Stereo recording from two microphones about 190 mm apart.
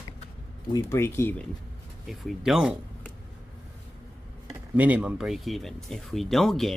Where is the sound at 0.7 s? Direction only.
10° left (ahead or behind).